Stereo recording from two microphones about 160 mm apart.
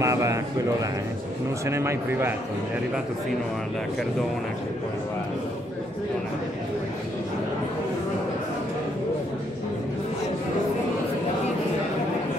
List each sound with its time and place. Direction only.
0.0 s a man's voice: 20° right (ahead or behind)